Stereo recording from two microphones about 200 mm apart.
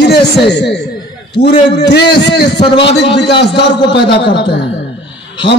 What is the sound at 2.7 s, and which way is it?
Speech, 25° left (ahead or behind).